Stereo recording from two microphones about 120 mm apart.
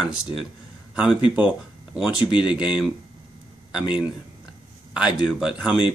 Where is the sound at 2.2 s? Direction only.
40° left (ahead or behind).